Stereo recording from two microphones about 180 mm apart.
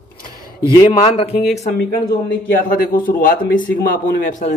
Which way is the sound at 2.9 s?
50° left (ahead or behind).